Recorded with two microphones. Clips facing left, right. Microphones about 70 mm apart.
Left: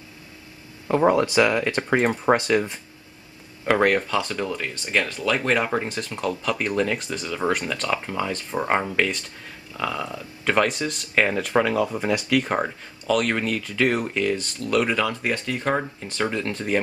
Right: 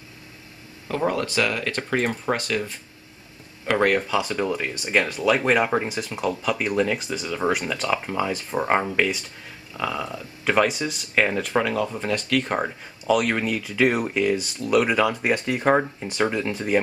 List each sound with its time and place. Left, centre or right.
0.8 s speech: centre
3.6 s speech: centre